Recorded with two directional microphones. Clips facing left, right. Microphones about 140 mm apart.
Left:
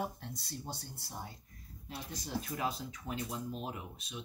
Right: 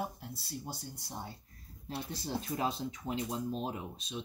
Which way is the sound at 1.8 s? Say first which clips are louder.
Right 5 dB; 30° right (ahead or behind).